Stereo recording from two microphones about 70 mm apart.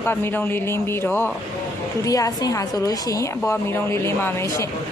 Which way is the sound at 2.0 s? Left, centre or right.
Left.